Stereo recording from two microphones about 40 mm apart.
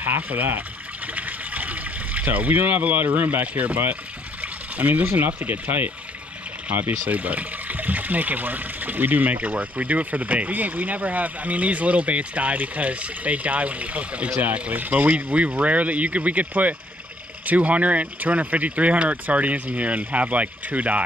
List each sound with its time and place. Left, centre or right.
0.3 s speech: right
14.7 s speech: right